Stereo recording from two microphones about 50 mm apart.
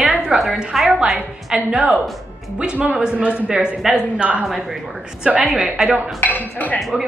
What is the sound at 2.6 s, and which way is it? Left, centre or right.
Speech, right.